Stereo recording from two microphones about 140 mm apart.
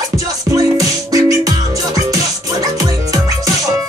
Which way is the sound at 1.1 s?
25° right (ahead or behind).